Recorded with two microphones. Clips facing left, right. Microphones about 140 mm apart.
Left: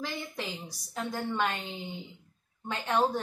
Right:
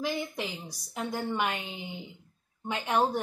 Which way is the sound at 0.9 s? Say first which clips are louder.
Right 1 dB; 15° right (ahead or behind).